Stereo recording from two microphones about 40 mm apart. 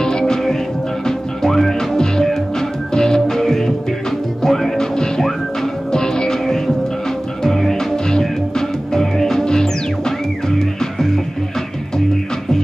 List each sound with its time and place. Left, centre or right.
0.3 s music: centre
7.9 s music: centre